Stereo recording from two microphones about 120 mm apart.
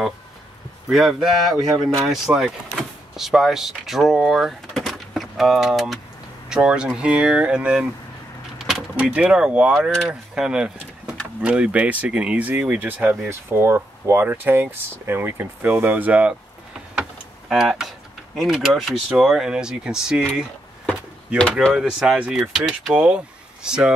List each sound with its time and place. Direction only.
0.8 s speech: 5° right (ahead or behind)
9.8 s speech: 5° left (ahead or behind); by 16.3 s 10° right (ahead or behind)
17.5 s speech: 5° right (ahead or behind)
21.3 s speech: 10° right (ahead or behind)